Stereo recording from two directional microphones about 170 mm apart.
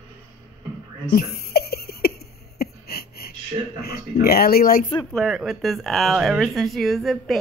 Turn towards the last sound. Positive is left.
turn(degrees=0)  # may be behind; listen again after turning